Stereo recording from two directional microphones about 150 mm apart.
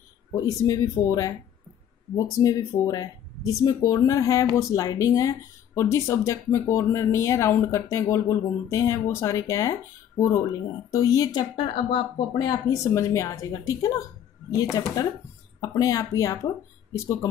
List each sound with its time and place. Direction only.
0.3 s speech: 25° left (ahead or behind)
2.4 s speech: 20° left (ahead or behind)
11.5 s speech: 35° left (ahead or behind)